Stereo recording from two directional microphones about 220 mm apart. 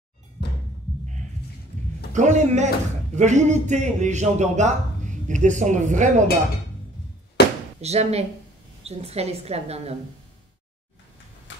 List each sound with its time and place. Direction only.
0.4 s music: 50° left (ahead or behind)
2.1 s a man's voice: 35° right (ahead or behind)
7.8 s a woman's voice: 30° right (ahead or behind)